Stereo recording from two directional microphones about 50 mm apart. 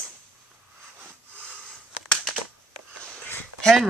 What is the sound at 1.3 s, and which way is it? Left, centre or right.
Sniff, left.